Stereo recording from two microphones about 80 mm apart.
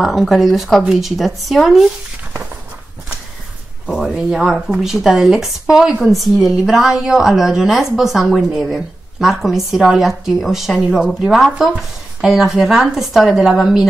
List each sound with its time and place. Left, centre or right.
0.0 s a woman's voice: centre
3.8 s a woman's voice: centre